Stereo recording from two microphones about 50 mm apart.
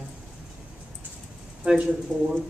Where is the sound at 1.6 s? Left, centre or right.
Right.